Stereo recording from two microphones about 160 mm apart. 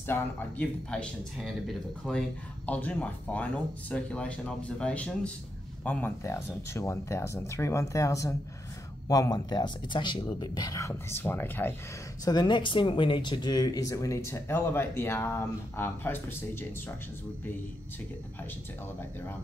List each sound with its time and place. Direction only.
0.0 s speech: 10° left (ahead or behind)
12.3 s speech: 30° left (ahead or behind)